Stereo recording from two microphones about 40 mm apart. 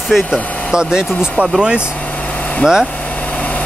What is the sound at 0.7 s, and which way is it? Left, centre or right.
Speech, centre.